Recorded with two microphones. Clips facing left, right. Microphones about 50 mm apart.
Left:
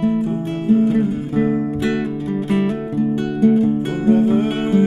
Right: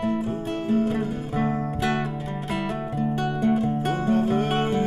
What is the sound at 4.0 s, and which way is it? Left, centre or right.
Music, centre.